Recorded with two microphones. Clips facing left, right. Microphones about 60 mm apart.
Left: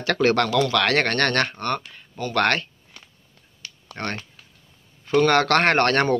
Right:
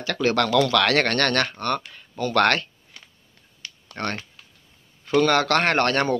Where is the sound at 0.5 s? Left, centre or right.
Left.